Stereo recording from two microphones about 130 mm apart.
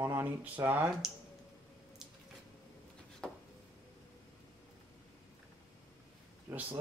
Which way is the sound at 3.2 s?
5° left (ahead or behind).